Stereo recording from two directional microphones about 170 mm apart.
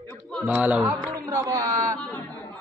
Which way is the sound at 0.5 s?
10° right (ahead or behind).